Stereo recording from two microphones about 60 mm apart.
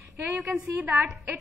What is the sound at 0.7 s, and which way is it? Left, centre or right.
Speech, right.